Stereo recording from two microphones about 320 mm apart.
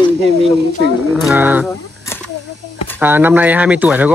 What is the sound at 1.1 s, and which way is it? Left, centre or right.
Speech, centre.